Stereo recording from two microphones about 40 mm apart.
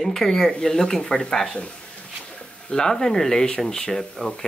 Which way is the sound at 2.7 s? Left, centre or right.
Centre.